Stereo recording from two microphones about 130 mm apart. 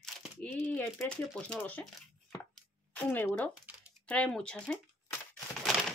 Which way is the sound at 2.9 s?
10° left (ahead or behind).